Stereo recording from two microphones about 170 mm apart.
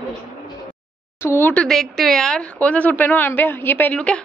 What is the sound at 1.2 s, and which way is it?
Speech, 15° left (ahead or behind).